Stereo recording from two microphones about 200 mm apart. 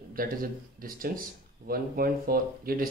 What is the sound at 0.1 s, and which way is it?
Speech, 45° right (ahead or behind).